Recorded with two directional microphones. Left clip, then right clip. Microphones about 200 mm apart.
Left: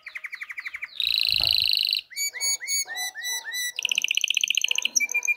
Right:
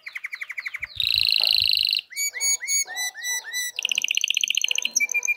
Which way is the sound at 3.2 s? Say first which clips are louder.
Right 2 dB; 45° left (ahead or behind).